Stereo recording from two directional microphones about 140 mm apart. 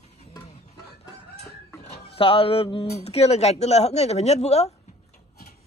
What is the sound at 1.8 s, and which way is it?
Speech, 40° left (ahead or behind).